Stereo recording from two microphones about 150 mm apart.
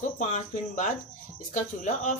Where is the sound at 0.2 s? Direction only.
50° left (ahead or behind).